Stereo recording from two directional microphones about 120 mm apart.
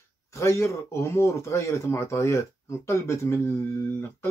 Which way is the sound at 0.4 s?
25° left (ahead or behind).